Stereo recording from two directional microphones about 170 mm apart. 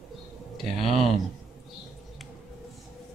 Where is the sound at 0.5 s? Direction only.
Centre (ahead or behind).